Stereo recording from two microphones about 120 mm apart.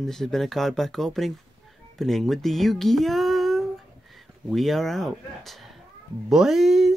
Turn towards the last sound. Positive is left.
turn(degrees=-5)  # may be behind; listen again after turning